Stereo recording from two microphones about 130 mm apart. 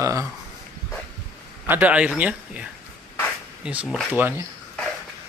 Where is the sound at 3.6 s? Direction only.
10° right (ahead or behind).